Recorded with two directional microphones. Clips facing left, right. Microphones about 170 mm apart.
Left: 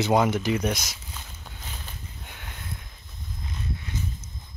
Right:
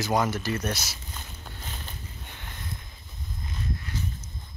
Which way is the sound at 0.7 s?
5° right (ahead or behind).